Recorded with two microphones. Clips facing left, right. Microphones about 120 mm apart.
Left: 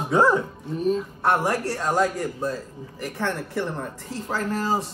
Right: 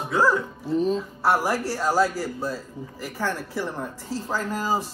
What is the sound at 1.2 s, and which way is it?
A man's voice, 5° right (ahead or behind).